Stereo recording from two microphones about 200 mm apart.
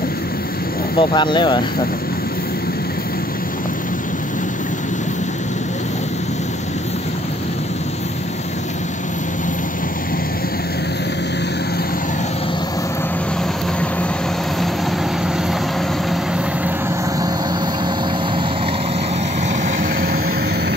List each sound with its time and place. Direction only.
0.9 s speech: 25° left (ahead or behind)